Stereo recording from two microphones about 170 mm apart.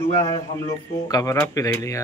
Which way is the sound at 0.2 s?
20° left (ahead or behind).